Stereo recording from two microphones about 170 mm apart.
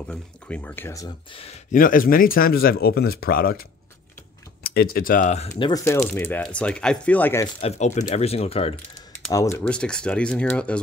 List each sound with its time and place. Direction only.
0.1 s speech: 10° left (ahead or behind)
1.7 s speech: 55° left (ahead or behind)
4.6 s speech: 60° left (ahead or behind); by 5.6 s 45° left (ahead or behind)
5.6 s speech: 20° left (ahead or behind)
7.4 s speech: 40° left (ahead or behind)
9.3 s speech: 15° left (ahead or behind)